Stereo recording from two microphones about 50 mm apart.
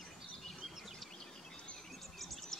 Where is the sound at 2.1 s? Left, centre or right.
Centre.